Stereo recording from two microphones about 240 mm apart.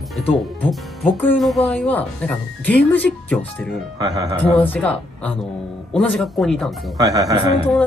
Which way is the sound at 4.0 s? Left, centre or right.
Centre.